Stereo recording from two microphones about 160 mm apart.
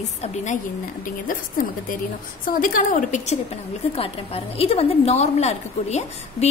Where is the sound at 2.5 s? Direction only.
55° left (ahead or behind).